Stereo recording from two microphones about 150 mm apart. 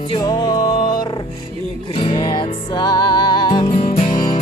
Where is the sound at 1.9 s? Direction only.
35° left (ahead or behind).